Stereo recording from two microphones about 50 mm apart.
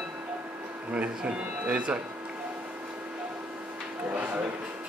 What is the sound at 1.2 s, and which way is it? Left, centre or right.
Speech, centre.